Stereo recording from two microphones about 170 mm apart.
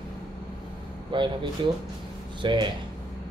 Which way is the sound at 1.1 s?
30° right (ahead or behind).